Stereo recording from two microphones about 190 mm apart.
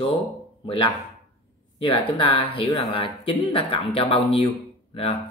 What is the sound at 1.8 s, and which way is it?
Speech, 25° left (ahead or behind).